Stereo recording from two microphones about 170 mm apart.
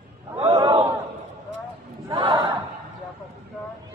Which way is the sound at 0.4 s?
30° right (ahead or behind).